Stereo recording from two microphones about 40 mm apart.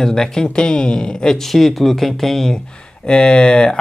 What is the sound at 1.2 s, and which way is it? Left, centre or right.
Speech, centre.